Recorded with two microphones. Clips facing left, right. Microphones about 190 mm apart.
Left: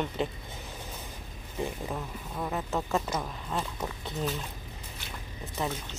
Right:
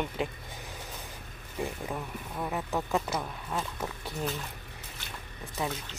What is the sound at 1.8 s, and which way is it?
Speech, centre (ahead or behind).